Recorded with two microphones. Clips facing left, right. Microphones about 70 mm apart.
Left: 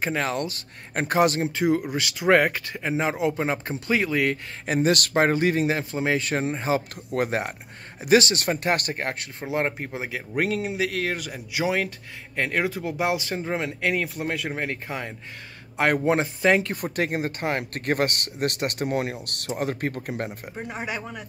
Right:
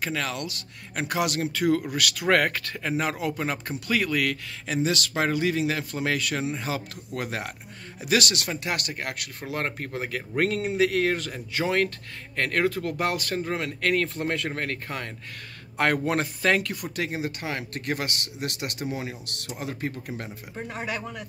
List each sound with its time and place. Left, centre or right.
0.0 s speech: left
4.6 s speech: left; by 14.1 s centre
14.1 s speech: centre
16.7 s speech: left
20.5 s speech: centre